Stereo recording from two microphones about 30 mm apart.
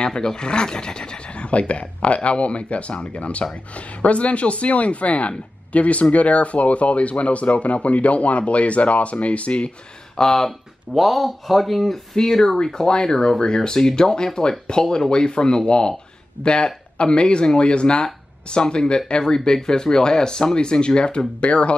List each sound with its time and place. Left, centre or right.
0.0 s speech: left
10.2 s speech: left
11.0 s speech: centre
12.2 s speech: centre
13.6 s speech: centre
21.4 s speech: left